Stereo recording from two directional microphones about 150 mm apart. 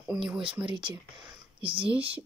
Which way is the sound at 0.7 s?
30° right (ahead or behind).